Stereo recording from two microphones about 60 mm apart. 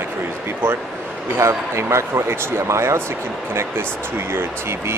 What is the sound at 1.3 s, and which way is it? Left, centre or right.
Speech, right.